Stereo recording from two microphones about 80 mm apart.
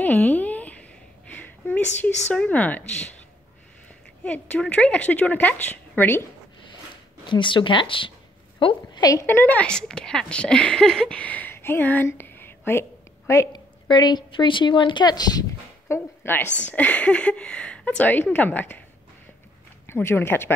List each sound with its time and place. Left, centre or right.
0.0 s a sound: left
2.3 s speech: centre
4.2 s speech: centre
7.2 s speech: left
8.5 s a sound: left
9.2 s a woman's voice: left
9.7 s speech: centre
12.1 s a sound: left
13.5 s speech: left
15.9 s a woman's voice: left
19.9 s a woman's voice: left